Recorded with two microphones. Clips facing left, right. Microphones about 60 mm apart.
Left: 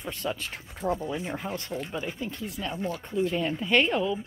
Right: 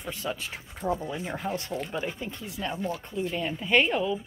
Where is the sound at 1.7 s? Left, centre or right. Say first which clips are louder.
Right 1 dB; centre.